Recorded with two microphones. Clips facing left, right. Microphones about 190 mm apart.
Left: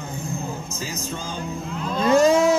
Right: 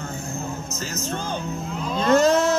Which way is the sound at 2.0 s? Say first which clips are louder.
Left 1 dB; 10° left (ahead or behind).